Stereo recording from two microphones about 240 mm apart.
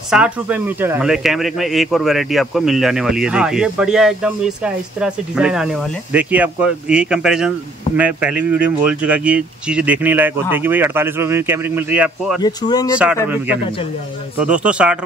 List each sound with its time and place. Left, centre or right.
0.1 s speech: centre
12.4 s speech: centre
12.9 s speech: centre
14.4 s speech: centre